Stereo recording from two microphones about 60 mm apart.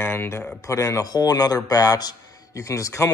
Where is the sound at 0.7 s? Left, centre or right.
Left.